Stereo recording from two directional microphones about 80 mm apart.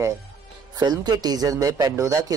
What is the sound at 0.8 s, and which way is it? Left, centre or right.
Speech, right.